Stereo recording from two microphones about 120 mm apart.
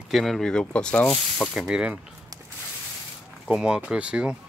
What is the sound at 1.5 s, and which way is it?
Speech, 5° right (ahead or behind).